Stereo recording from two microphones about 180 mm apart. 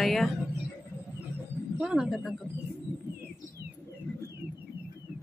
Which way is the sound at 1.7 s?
5° right (ahead or behind).